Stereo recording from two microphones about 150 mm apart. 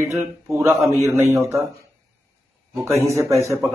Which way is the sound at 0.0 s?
20° right (ahead or behind).